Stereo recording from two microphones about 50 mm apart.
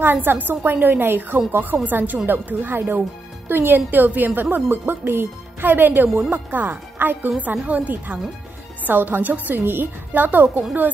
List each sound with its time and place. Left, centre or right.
0.0 s a woman's voice: right